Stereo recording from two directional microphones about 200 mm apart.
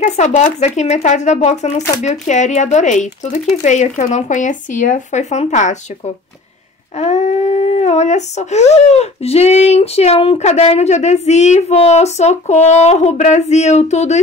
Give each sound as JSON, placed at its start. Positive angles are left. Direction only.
{"t": 0.0, "sound": "speech", "side_deg": 35}
{"t": 7.0, "sound": "speech", "side_deg": 35}